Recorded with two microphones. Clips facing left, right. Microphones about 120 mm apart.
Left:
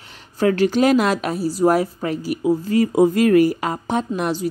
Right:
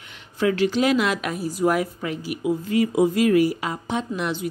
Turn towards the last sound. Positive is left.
turn(degrees=40)  # may be behind; listen again after turning